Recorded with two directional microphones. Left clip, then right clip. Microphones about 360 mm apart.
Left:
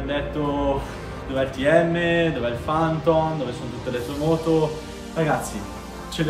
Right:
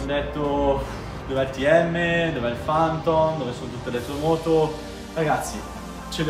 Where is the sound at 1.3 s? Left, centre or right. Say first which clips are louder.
Even; centre.